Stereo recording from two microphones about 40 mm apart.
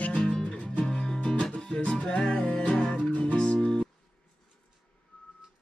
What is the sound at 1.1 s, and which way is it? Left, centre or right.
Music, left.